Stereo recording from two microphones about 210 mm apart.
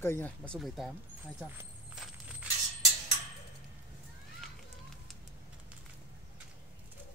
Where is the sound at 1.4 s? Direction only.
5° right (ahead or behind).